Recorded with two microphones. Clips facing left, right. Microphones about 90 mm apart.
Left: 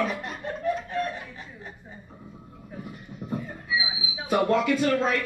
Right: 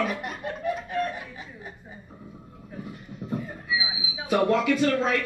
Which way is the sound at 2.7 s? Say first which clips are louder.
Right 1 dB; centre (ahead or behind).